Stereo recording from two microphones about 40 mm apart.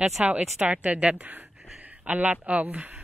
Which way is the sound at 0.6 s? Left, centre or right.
Right.